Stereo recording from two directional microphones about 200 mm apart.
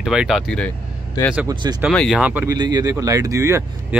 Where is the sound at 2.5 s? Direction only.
20° right (ahead or behind).